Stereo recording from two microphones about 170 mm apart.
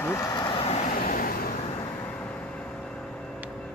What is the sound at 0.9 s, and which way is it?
Vehicle, 55° left (ahead or behind).